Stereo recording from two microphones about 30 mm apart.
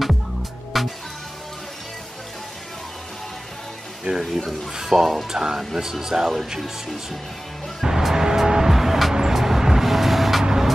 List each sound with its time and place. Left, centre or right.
0.0 s music: centre
4.1 s speech: right
4.7 s speech: centre
7.8 s music: centre